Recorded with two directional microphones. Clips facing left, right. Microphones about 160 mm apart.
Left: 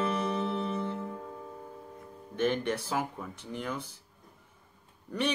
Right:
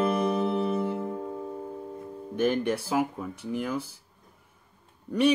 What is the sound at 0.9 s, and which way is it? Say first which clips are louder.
Music: right 7 dB; 30° right (ahead or behind).